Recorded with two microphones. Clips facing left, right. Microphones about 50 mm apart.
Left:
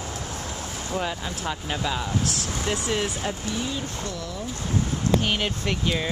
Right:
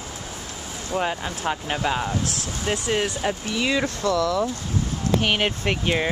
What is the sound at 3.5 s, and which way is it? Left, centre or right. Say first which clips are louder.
Speech: right 6 dB; right.